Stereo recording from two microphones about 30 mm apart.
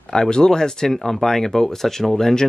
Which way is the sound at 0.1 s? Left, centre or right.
Left.